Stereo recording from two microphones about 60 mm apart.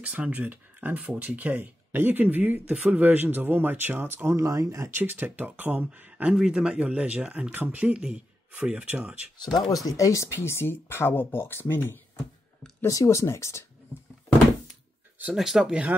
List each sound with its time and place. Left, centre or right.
0.0 s speech: right
4.4 s speech: right
4.9 s speech: right
6.3 s speech: centre
6.6 s speech: centre
9.6 s speech: left
10.3 s speech: left
12.8 s speech: left
15.3 s speech: centre